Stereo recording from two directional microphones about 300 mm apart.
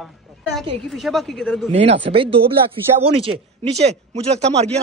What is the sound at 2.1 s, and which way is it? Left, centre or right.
Speech, centre.